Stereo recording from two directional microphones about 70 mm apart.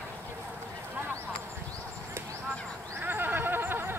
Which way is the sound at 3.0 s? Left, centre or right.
Right.